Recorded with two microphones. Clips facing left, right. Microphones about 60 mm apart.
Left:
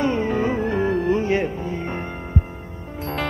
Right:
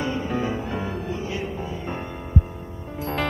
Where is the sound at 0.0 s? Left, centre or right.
Left.